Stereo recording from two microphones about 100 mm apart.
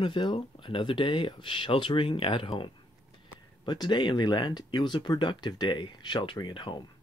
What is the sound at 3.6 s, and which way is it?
Speech, 50° left (ahead or behind).